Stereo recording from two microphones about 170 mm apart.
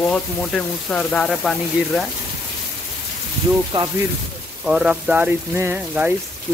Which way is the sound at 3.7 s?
30° right (ahead or behind).